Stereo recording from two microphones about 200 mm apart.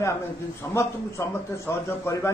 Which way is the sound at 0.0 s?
15° left (ahead or behind).